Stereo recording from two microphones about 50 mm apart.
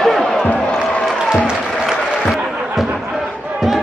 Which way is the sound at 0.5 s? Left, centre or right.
Left.